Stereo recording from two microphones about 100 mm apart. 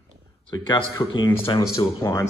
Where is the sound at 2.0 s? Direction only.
40° left (ahead or behind).